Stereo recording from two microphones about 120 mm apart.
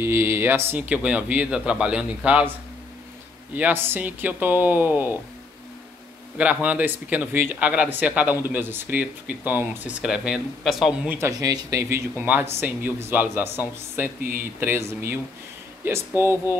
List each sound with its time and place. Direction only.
0.0 s speech: 20° right (ahead or behind)
3.5 s speech: 15° right (ahead or behind)
6.3 s speech: 10° right (ahead or behind)
11.1 s speech: 25° right (ahead or behind)